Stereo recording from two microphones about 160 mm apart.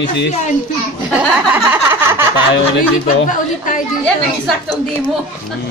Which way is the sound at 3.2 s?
55° left (ahead or behind).